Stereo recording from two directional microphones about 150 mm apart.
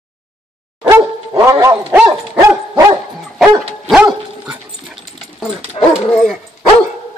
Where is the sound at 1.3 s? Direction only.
20° right (ahead or behind).